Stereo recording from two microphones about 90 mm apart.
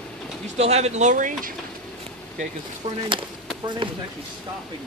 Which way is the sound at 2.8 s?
90° right.